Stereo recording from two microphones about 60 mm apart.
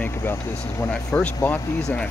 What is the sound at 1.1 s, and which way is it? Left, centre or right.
Speech, left.